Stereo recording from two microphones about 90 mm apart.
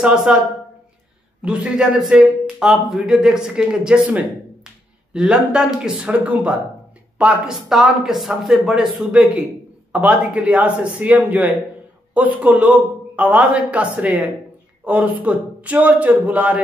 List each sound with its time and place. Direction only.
0.0 s speech: 5° right (ahead or behind)
1.4 s a man's voice: 10° right (ahead or behind)